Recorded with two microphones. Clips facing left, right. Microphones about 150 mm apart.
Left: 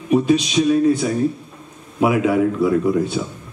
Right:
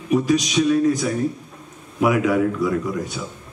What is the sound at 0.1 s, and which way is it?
A man's voice, 25° left (ahead or behind).